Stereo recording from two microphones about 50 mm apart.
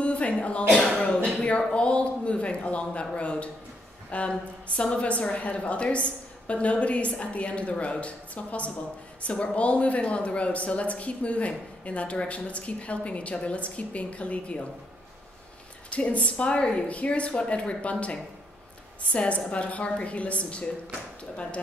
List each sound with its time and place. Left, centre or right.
0.0 s a sound: left
1.7 s speech: left
15.9 s speech: left